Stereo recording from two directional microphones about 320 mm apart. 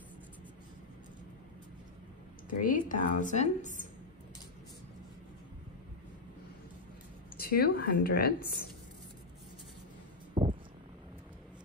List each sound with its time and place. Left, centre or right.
2.6 s a woman's voice: left
7.3 s a woman's voice: left
10.4 s a sound: centre